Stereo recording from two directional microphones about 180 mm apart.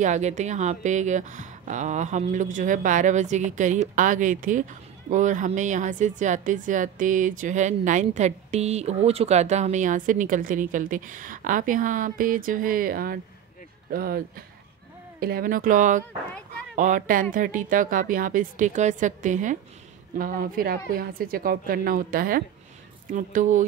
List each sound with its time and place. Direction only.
0.0 s a woman's voice: 40° right (ahead or behind)